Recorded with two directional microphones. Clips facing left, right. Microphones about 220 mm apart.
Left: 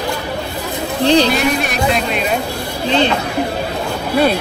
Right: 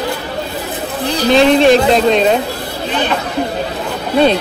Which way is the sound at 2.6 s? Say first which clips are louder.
Even; 20° right (ahead or behind).